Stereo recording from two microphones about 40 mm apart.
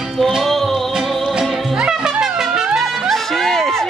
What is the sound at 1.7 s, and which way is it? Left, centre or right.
Music, centre.